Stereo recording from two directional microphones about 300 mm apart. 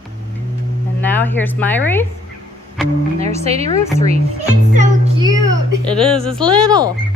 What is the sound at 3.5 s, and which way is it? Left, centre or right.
A woman's voice, centre.